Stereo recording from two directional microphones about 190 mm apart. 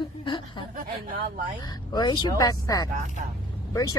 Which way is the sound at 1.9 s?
20° left (ahead or behind).